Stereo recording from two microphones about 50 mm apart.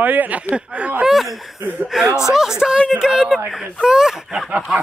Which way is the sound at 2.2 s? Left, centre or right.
Centre.